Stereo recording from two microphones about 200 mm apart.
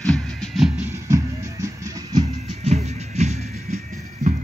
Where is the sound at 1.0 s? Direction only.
15° right (ahead or behind).